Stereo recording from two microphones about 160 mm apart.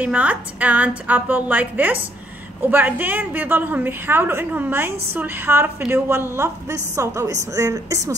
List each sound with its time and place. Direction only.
0.0 s a woman's voice: 10° right (ahead or behind)